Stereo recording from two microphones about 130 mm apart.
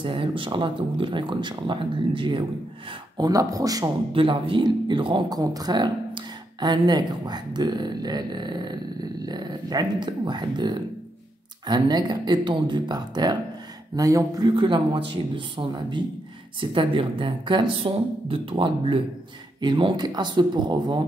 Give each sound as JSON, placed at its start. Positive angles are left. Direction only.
{"t": 0.0, "sound": "speech", "side_deg": -40}
{"t": 3.2, "sound": "speech", "side_deg": -25}
{"t": 4.1, "sound": "speech", "side_deg": -45}